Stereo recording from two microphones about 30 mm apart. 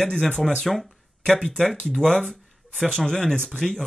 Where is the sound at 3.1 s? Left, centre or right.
Left.